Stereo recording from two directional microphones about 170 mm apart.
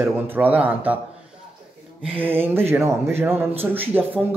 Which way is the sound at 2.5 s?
15° right (ahead or behind).